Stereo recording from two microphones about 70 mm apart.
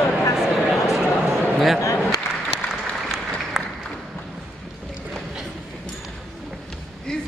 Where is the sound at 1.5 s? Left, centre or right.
Centre.